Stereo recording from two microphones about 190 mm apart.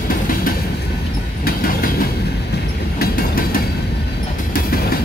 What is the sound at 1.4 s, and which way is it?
Train, 50° left (ahead or behind).